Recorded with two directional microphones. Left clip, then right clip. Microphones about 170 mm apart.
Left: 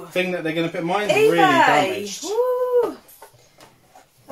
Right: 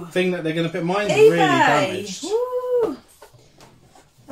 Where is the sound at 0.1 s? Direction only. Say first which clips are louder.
Right 1 dB; 10° right (ahead or behind).